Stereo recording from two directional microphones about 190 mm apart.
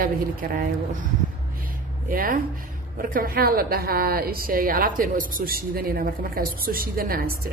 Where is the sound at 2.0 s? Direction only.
45° right (ahead or behind).